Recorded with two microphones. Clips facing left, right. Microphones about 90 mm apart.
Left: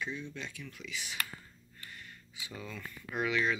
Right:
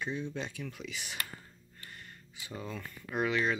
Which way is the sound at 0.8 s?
55° right (ahead or behind).